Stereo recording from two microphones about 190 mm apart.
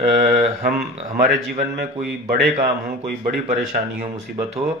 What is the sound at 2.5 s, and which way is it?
Speech, 35° right (ahead or behind).